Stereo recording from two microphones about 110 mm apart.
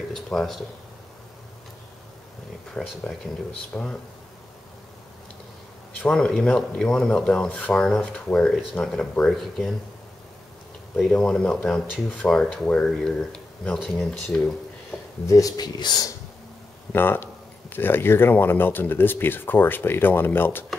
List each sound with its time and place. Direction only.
0.1 s speech: 5° left (ahead or behind)
2.8 s speech: 10° left (ahead or behind)
6.0 s speech: 5° left (ahead or behind)
11.1 s speech: 10° left (ahead or behind)
14.9 s a sound: 5° right (ahead or behind)
15.2 s speech: 30° left (ahead or behind)
16.9 s speech: 20° left (ahead or behind)